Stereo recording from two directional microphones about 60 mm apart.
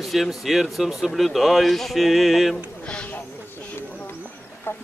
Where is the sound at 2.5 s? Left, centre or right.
Centre.